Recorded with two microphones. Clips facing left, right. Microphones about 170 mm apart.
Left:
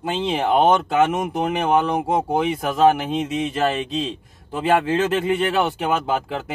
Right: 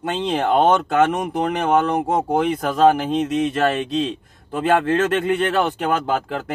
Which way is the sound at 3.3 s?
Centre (ahead or behind).